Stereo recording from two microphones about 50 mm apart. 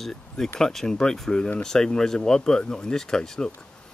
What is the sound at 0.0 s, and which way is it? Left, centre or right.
Speech, centre.